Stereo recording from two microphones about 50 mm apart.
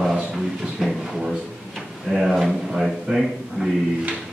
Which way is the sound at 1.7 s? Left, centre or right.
Centre.